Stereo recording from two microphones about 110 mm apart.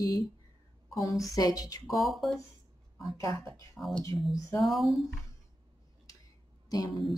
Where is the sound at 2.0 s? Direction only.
Centre (ahead or behind).